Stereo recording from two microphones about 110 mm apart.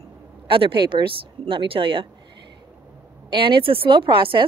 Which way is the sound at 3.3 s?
50° right (ahead or behind).